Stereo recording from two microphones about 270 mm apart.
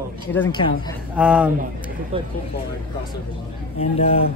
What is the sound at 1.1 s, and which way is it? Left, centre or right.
Speech, centre.